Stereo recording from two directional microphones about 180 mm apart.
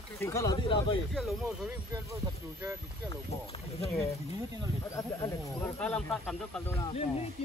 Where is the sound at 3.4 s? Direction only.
35° left (ahead or behind).